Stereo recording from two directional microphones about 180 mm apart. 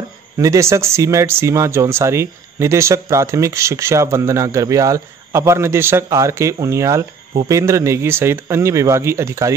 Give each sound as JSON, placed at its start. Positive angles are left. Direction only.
{"t": 0.4, "sound": "speech", "side_deg": -15}